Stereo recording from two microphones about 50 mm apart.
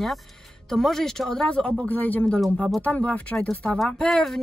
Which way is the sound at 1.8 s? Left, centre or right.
Left.